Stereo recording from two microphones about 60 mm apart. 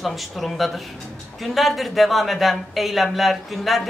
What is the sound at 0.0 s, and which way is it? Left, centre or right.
A woman's voice, centre.